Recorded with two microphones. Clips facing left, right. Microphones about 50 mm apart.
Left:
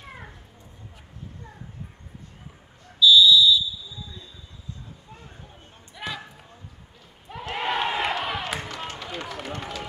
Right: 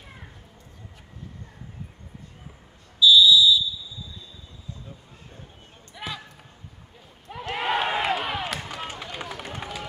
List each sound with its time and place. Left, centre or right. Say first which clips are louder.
3.0 s whistle: even; centre
5.9 s basketball bounce: left 1 dB; centre
7.2 s a sound: right 1 dB; centre
8.6 s run: even; centre